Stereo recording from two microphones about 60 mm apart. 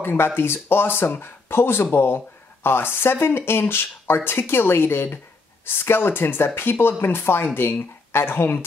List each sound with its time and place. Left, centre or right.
0.0 s speech: left